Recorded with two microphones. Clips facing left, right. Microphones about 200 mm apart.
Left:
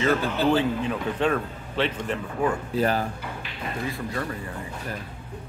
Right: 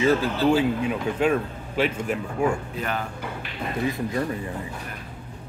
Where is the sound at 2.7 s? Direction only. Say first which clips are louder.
Left 6 dB; 35° left (ahead or behind).